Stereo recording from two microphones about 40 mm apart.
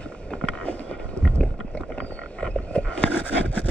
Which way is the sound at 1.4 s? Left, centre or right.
Left.